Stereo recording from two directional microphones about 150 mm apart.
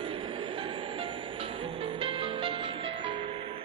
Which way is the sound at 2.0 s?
35° right (ahead or behind).